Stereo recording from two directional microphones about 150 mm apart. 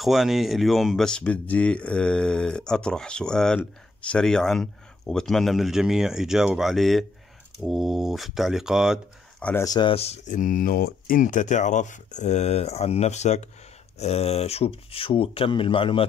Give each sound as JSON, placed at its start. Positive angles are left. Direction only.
{"t": 0.0, "sound": "speech", "side_deg": 0}
{"t": 9.4, "sound": "speech", "side_deg": 10}
{"t": 9.7, "sound": "speech", "side_deg": 30}